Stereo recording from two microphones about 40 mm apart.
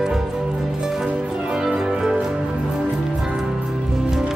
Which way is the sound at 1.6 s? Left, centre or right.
Centre.